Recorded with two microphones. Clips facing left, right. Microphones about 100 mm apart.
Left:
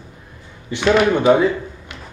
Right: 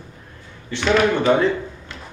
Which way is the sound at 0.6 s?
15° left (ahead or behind).